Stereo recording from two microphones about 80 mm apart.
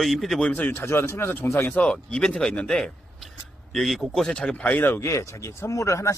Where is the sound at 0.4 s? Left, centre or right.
Left.